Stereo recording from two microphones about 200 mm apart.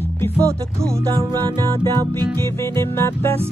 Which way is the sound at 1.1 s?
25° right (ahead or behind).